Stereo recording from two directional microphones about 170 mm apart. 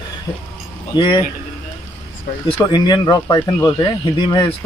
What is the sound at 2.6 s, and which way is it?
Speech, 25° left (ahead or behind).